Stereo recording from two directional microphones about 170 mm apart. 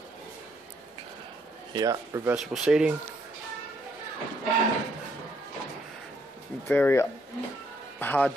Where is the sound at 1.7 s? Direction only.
20° right (ahead or behind).